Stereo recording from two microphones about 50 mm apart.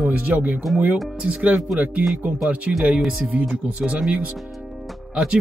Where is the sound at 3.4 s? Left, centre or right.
Centre.